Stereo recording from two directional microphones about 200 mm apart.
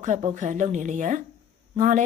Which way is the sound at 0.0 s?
35° right (ahead or behind).